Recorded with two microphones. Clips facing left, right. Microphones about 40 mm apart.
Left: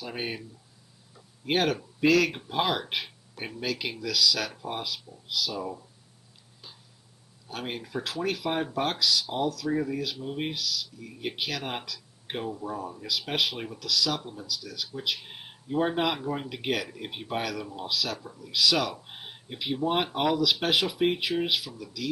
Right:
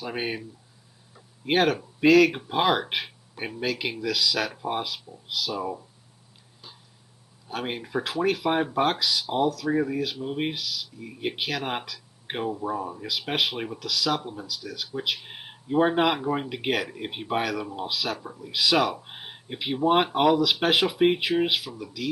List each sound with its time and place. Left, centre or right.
0.0 s speech: centre
7.4 s speech: centre